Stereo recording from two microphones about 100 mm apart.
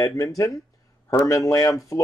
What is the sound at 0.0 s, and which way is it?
Speech, 35° left (ahead or behind).